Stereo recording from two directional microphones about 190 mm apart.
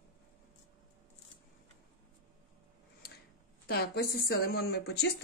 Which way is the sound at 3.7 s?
55° left (ahead or behind).